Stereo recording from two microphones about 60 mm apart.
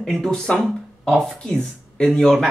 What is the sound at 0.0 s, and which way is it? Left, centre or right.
Speech, centre.